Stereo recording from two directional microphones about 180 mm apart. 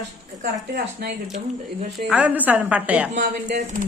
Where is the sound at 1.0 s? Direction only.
60° right (ahead or behind).